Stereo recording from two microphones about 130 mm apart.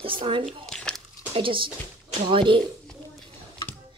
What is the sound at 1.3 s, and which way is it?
Speech, 40° right (ahead or behind).